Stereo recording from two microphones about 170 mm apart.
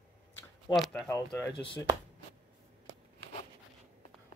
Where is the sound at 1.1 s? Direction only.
20° left (ahead or behind).